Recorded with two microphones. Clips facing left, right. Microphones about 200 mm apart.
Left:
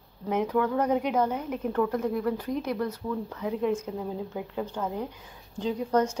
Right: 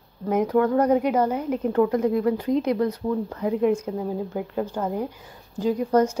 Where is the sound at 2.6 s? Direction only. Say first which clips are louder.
Right 7 dB; 65° right (ahead or behind).